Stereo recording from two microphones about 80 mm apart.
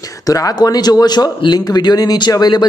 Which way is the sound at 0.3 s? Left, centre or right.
Left.